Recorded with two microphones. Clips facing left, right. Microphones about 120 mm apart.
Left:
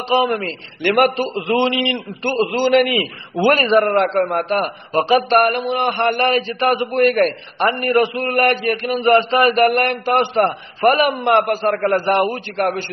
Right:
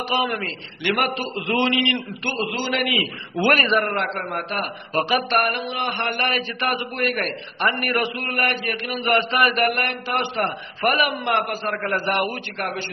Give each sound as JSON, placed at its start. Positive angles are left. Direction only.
{"t": 0.1, "sound": "speech", "side_deg": 30}
{"t": 1.0, "sound": "a man's voice", "side_deg": 40}
{"t": 1.3, "sound": "a man's voice", "side_deg": 30}
{"t": 3.4, "sound": "a man's voice", "side_deg": 30}
{"t": 4.9, "sound": "speech", "side_deg": 30}
{"t": 5.4, "sound": "a man's voice", "side_deg": 45}
{"t": 7.0, "sound": "a sound", "side_deg": 45}
{"t": 9.0, "sound": "a man's voice", "side_deg": 30}